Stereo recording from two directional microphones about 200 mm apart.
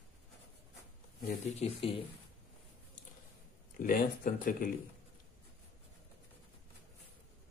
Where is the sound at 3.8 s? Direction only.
45° left (ahead or behind).